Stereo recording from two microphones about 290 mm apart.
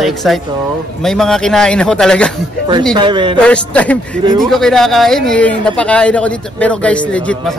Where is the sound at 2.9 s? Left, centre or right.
Centre.